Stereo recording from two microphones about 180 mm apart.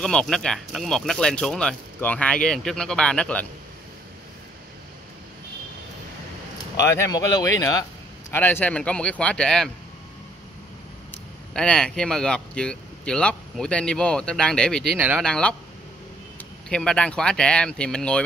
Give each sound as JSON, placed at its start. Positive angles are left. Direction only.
{"t": 0.0, "sound": "speech", "side_deg": 5}
{"t": 6.8, "sound": "speech", "side_deg": 15}
{"t": 11.5, "sound": "speech", "side_deg": 5}
{"t": 15.0, "sound": "speech", "side_deg": -10}
{"t": 15.2, "sound": "speech", "side_deg": 5}